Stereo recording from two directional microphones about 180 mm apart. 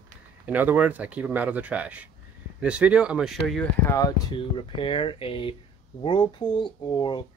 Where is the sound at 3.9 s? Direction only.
20° left (ahead or behind).